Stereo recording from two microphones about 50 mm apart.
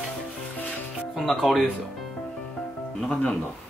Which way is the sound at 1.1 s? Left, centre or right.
Centre.